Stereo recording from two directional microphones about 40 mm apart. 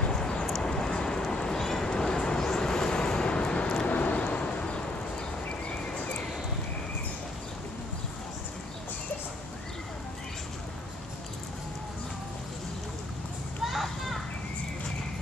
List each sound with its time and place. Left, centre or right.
0.0 s a sound: centre
1.9 s vehicle: centre
3.8 s vehicle: left
13.7 s children playing: centre